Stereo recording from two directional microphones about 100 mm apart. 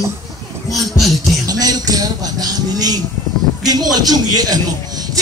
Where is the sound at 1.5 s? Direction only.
40° right (ahead or behind).